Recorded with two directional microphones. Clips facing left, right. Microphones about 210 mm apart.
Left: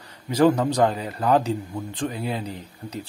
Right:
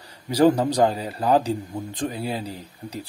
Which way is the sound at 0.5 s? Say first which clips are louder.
Right 1 dB; 30° right (ahead or behind).